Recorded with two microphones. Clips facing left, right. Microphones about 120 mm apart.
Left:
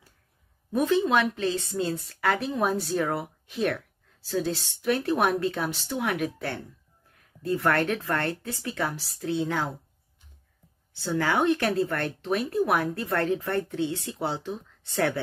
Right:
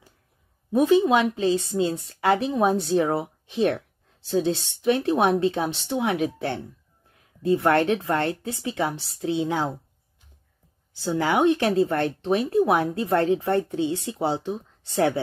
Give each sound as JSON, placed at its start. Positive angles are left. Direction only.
{"t": 0.7, "sound": "speech", "side_deg": -15}
{"t": 11.0, "sound": "speech", "side_deg": -20}